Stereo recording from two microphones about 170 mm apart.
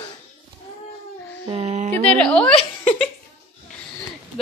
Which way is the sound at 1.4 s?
40° right (ahead or behind).